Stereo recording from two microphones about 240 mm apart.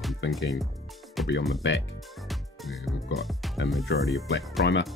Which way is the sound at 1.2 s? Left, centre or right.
Centre.